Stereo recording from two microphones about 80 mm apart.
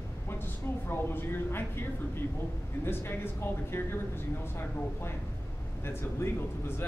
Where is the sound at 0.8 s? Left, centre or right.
Left.